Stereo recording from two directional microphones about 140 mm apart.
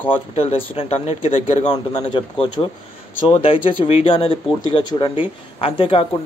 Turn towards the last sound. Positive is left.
turn(degrees=40)  # may be behind; listen again after turning